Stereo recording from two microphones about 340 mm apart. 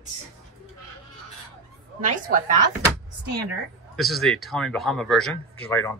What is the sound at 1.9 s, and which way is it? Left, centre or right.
Speech, right.